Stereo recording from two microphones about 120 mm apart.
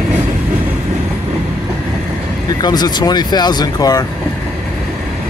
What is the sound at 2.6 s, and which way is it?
Speech, 35° left (ahead or behind).